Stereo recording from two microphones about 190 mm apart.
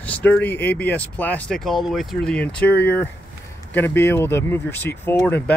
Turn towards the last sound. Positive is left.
turn(degrees=10)  # may be behind; listen again after turning